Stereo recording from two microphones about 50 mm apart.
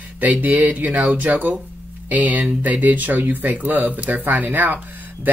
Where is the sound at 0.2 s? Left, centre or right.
Right.